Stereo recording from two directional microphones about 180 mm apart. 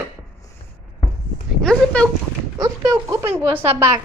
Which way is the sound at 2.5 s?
20° right (ahead or behind).